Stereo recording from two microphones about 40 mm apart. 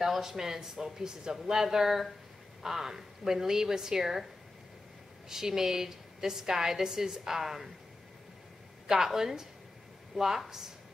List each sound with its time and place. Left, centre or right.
0.0 s a woman's voice: centre
5.3 s a woman's voice: centre
8.8 s a woman's voice: centre